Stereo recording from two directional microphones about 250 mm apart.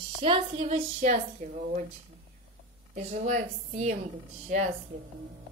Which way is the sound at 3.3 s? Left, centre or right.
Right.